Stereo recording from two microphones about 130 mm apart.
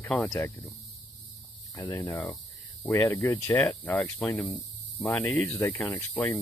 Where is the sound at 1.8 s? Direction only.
25° left (ahead or behind).